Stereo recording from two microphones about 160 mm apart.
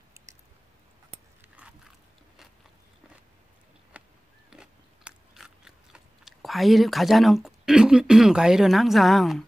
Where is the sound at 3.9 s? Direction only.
10° right (ahead or behind).